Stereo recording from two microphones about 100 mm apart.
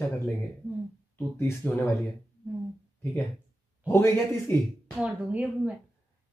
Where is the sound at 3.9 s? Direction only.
25° left (ahead or behind).